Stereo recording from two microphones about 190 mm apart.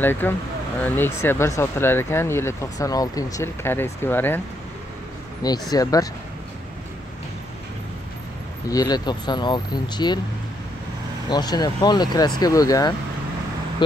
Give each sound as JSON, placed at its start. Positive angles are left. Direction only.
{"t": 0.0, "sound": "speech", "side_deg": 10}
{"t": 5.4, "sound": "speech", "side_deg": 20}
{"t": 8.6, "sound": "speech", "side_deg": 20}
{"t": 11.2, "sound": "speech", "side_deg": 20}